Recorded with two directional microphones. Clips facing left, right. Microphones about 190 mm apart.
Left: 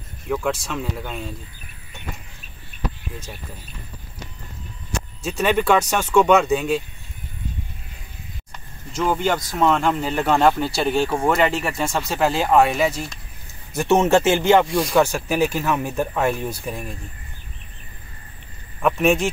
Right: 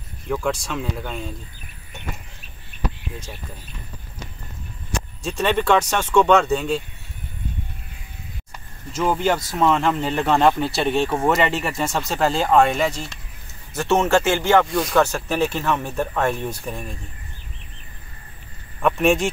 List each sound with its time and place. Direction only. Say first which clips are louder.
0.3 s speech: even; 5° left (ahead or behind)
5.2 s speech: left 1 dB; 5° left (ahead or behind)
8.9 s speech: right 1 dB; 5° right (ahead or behind)
13.7 s speech: left 2 dB; 15° left (ahead or behind)
18.8 s speech: even; centre (ahead or behind)